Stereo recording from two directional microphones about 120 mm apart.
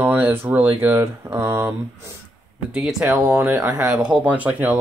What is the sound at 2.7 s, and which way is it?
Speech, 5° right (ahead or behind).